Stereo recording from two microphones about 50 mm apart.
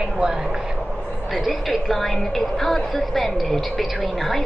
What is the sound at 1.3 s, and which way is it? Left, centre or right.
A woman's voice, centre.